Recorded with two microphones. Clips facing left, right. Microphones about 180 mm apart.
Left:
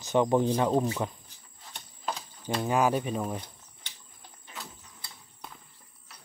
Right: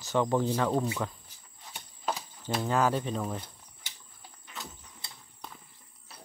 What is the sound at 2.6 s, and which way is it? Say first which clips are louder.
Speech: left 2 dB; 15° left (ahead or behind).